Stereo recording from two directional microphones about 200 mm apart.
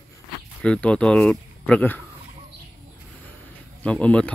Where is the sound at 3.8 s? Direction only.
5° left (ahead or behind).